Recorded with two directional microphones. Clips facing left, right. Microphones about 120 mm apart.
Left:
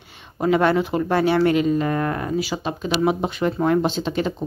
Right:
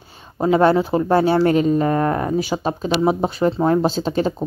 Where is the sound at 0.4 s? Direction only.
30° right (ahead or behind).